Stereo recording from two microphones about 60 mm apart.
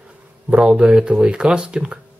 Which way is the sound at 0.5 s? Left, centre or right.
Centre.